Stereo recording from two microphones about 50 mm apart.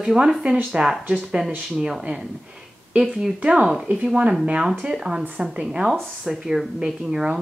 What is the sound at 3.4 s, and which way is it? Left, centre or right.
Speech, right.